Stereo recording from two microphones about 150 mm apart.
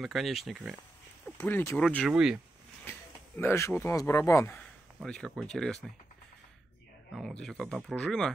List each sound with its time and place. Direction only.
0.0 s speech: centre (ahead or behind)
1.4 s speech: 15° left (ahead or behind)
2.0 s speech: 5° right (ahead or behind)
2.8 s a sound: 15° left (ahead or behind)
3.8 s speech: 20° left (ahead or behind)
4.6 s speech: 5° left (ahead or behind)
7.2 s speech: 5° left (ahead or behind)